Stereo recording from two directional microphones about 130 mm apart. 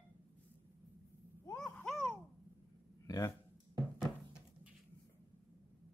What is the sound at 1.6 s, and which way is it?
Babbling, 10° left (ahead or behind).